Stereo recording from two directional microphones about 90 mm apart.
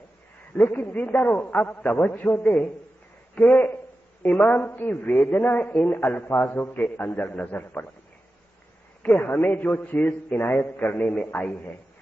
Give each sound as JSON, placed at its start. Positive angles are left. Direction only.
{"t": 0.6, "sound": "a man's voice", "side_deg": 20}
{"t": 9.0, "sound": "a man's voice", "side_deg": 15}